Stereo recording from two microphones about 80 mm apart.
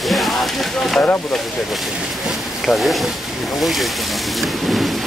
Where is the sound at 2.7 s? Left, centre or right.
Centre.